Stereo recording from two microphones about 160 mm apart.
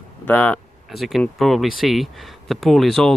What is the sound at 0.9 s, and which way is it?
Speech, centre (ahead or behind).